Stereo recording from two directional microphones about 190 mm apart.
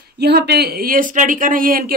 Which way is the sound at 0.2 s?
60° right (ahead or behind).